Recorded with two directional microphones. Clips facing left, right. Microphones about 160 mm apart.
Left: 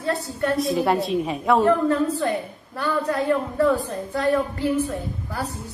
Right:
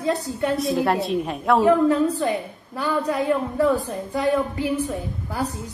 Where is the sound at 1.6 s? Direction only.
10° right (ahead or behind).